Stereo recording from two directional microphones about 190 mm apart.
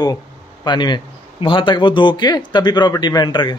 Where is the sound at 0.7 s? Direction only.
25° left (ahead or behind).